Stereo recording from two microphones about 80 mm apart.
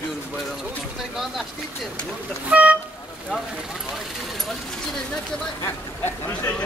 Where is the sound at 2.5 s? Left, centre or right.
Centre.